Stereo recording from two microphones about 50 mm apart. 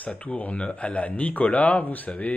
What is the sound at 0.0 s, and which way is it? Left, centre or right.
Speech, left.